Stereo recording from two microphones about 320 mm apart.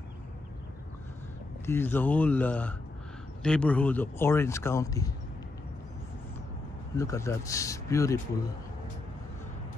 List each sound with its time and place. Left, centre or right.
1.7 s speech: centre
7.0 s speech: centre